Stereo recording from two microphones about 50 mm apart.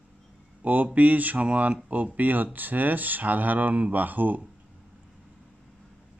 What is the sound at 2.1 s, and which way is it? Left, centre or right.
Speech, right.